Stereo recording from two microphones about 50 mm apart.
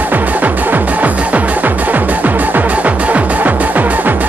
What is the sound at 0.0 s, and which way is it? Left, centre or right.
Music, right.